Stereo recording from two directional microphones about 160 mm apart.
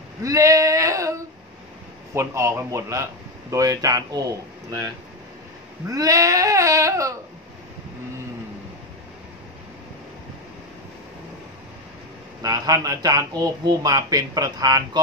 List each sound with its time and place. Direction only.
0.2 s a sound: 20° right (ahead or behind)
2.1 s speech: 15° right (ahead or behind)
5.9 s baby cry: 20° right (ahead or behind)
12.4 s speech: 25° right (ahead or behind)